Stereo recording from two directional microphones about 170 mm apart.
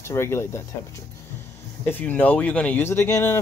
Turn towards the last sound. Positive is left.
turn(degrees=15)  # may be behind; listen again after turning